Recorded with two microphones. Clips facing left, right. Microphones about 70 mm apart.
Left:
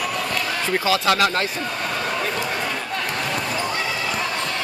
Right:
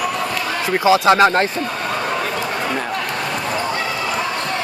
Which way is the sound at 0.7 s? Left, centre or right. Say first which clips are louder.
Right 7 dB; right.